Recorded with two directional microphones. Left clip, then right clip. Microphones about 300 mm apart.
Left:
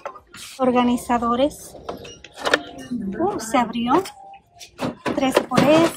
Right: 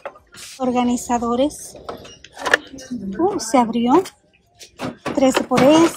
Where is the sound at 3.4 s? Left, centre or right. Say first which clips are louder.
Right 4 dB; centre.